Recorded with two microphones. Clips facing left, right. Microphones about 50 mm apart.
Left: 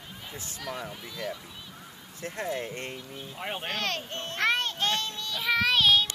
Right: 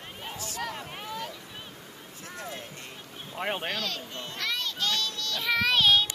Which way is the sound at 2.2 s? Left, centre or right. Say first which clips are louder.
Left 7 dB; left.